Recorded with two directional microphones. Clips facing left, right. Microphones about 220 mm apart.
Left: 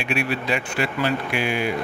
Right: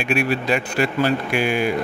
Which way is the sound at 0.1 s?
45° right (ahead or behind).